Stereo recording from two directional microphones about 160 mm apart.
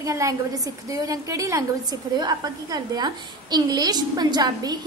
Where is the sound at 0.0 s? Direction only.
20° right (ahead or behind).